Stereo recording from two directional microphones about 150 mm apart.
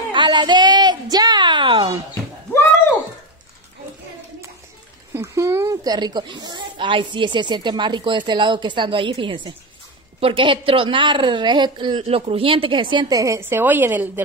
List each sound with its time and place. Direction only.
0.1 s a woman's voice: 30° right (ahead or behind)
5.1 s a woman's voice: 20° right (ahead or behind)